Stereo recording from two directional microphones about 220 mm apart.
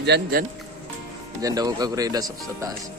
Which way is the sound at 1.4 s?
15° right (ahead or behind).